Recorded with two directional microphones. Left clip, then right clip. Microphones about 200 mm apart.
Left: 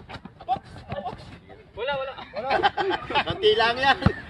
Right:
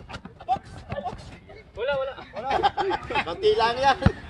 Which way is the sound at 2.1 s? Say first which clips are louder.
Left 1 dB; 30° left (ahead or behind).